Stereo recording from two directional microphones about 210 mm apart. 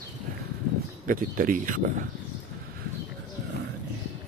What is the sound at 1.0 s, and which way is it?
Speech, 40° right (ahead or behind).